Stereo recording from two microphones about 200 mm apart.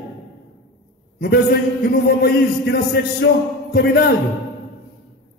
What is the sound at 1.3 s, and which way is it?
A man's voice, 55° left (ahead or behind).